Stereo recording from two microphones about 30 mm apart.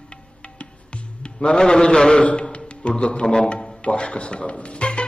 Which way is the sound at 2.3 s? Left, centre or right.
Left.